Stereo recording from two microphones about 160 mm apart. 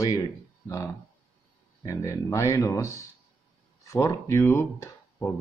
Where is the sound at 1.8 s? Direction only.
20° left (ahead or behind).